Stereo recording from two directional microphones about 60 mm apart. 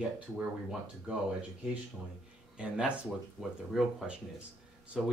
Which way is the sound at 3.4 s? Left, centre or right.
Centre.